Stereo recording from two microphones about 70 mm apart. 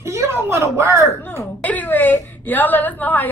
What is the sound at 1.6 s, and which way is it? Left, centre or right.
A woman's voice, left.